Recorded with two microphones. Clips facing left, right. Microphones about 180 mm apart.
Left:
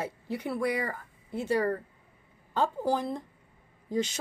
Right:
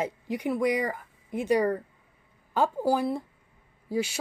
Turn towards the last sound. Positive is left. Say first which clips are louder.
# right 1 dB
turn(degrees=-10)  # may be behind; listen again after turning